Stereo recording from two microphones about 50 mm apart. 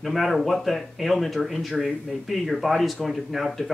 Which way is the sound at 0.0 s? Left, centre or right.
Centre.